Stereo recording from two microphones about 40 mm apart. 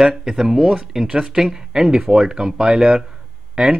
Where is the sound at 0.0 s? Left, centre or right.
Centre.